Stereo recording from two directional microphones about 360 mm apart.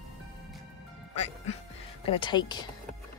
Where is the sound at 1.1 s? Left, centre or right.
Centre.